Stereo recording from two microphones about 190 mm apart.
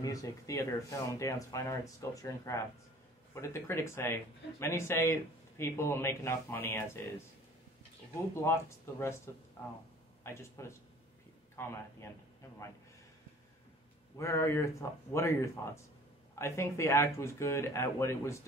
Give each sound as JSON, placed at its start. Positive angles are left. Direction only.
{"t": 0.0, "sound": "speech", "side_deg": 15}
{"t": 8.4, "sound": "speech", "side_deg": 15}
{"t": 14.1, "sound": "speech", "side_deg": 15}